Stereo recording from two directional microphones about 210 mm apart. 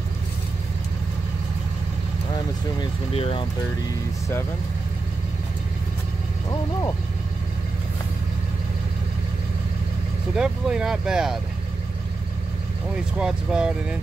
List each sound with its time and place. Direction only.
2.3 s speech: 25° left (ahead or behind)
10.3 s speech: 5° right (ahead or behind)
13.2 s speech: 5° right (ahead or behind)